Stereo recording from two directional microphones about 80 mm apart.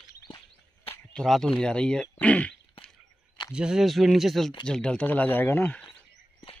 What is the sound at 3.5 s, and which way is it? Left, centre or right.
Speech, centre.